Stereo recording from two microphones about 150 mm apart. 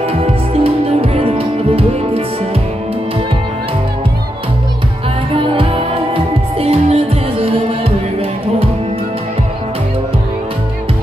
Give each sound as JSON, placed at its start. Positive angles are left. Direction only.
{"t": 0.0, "sound": "music", "side_deg": -40}
{"t": 5.3, "sound": "music", "side_deg": -35}